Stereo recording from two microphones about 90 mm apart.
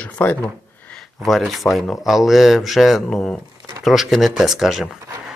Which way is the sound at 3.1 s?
15° left (ahead or behind).